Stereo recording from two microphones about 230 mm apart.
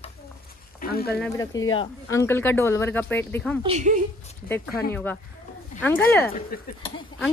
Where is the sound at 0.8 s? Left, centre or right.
Left.